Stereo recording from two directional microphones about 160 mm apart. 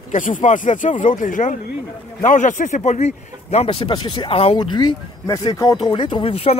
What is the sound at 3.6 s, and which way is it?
Speech, 30° left (ahead or behind).